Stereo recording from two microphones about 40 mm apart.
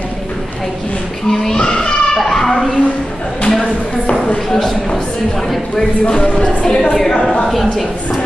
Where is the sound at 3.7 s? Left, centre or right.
Left.